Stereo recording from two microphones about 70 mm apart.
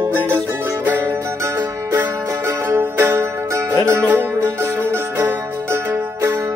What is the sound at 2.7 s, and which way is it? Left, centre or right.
Music, right.